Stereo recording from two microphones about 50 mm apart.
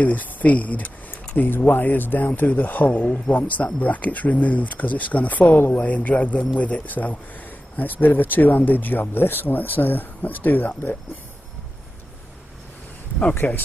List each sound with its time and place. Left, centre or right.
0.0 s speech: left
13.4 s speech: left